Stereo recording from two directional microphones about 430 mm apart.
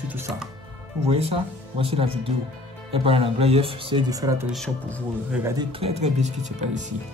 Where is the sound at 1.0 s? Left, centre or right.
Centre.